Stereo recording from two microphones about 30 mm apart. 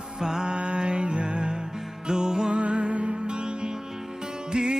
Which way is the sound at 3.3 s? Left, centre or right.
Right.